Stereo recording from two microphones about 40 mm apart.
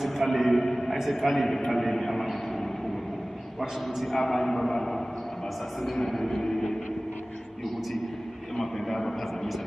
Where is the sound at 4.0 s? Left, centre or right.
Centre.